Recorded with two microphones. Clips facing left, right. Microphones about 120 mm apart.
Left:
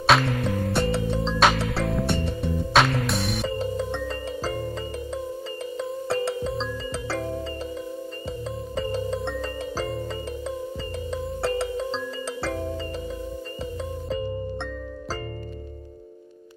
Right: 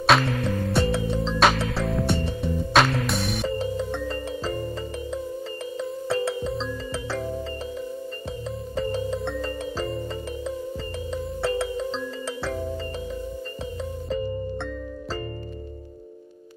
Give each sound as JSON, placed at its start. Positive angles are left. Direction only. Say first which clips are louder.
{"t": 0.0, "sound": "music", "louder": "even", "side_deg": 0}
{"t": 6.0, "sound": "music", "louder": "right 1 dB", "side_deg": 0}
{"t": 9.4, "sound": "music", "louder": "right 1 dB", "side_deg": 0}